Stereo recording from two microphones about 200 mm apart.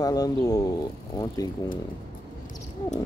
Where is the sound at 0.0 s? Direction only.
20° left (ahead or behind).